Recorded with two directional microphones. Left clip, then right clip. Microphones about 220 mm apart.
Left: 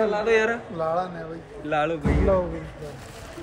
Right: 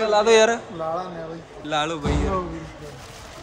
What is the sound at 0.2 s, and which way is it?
Speech, 25° right (ahead or behind).